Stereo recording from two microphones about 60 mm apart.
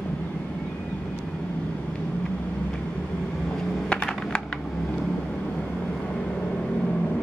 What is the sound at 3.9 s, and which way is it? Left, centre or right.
Computer keyboard, centre.